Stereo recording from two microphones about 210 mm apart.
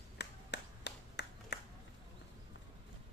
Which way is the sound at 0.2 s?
50° left (ahead or behind).